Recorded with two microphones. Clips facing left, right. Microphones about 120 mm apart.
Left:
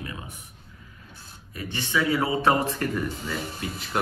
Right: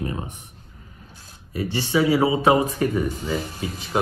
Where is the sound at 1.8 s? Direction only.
20° right (ahead or behind).